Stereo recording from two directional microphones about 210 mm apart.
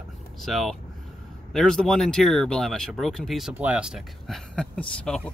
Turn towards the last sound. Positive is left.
turn(degrees=5)  # may be behind; listen again after turning